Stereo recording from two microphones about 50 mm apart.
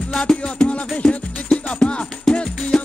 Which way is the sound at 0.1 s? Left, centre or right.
Centre.